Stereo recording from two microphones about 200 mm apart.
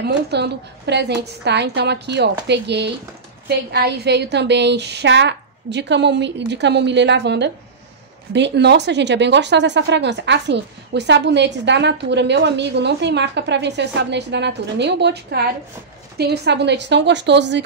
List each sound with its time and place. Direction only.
0.0 s speech: 55° right (ahead or behind)